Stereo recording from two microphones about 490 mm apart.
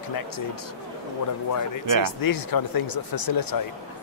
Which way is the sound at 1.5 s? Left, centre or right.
Left.